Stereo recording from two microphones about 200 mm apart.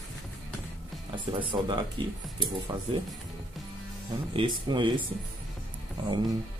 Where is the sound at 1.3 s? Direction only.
25° right (ahead or behind).